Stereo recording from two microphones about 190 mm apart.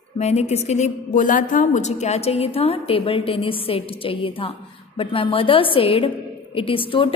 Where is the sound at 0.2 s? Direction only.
35° left (ahead or behind).